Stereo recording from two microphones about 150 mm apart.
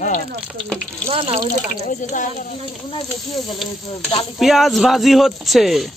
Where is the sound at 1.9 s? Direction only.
55° left (ahead or behind).